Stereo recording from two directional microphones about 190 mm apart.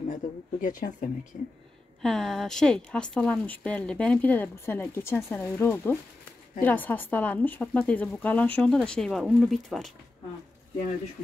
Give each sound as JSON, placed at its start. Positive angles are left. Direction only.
{"t": 0.1, "sound": "speech", "side_deg": 45}
{"t": 2.0, "sound": "a woman's voice", "side_deg": 0}